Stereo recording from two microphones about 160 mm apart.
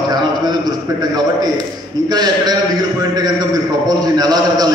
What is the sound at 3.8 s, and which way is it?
Speech, 25° right (ahead or behind).